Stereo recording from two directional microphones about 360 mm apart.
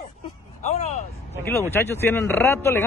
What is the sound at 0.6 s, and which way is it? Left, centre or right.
Speech, centre.